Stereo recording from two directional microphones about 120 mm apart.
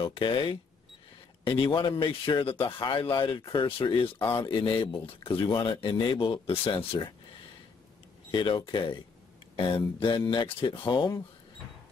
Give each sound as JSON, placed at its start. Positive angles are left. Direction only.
{"t": 0.0, "sound": "a man's voice", "side_deg": 45}
{"t": 8.3, "sound": "a man's voice", "side_deg": 40}